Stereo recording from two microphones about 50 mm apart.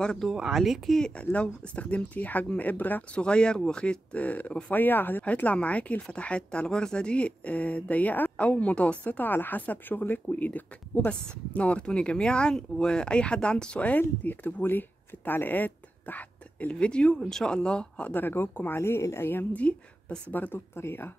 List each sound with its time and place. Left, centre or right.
0.3 s speech: centre
0.9 s speech: centre; by 5.2 s left
5.2 s speech: left
9.3 s speech: left
11.1 s speech: left
16.7 s speech: centre
17.6 s speech: left
18.1 s speech: left
18.8 s speech: left
19.6 s speech: left
20.5 s speech: left